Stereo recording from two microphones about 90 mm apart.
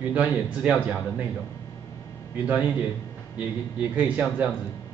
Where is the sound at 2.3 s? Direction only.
15° right (ahead or behind).